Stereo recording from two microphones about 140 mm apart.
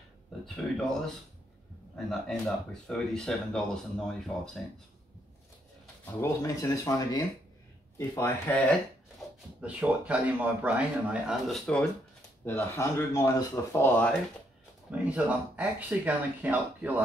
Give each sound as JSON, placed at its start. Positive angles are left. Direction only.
{"t": 0.7, "sound": "speech", "side_deg": 0}
{"t": 6.0, "sound": "speech", "side_deg": 20}
{"t": 9.6, "sound": "speech", "side_deg": -10}
{"t": 12.4, "sound": "speech", "side_deg": 15}
{"t": 14.9, "sound": "speech", "side_deg": -10}